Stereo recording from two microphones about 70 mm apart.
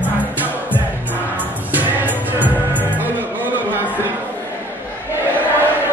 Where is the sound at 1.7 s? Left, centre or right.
Right.